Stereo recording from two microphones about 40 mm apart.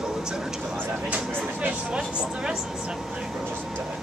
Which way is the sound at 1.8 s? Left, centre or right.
Right.